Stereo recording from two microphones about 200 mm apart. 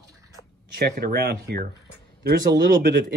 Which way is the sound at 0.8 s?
50° right (ahead or behind).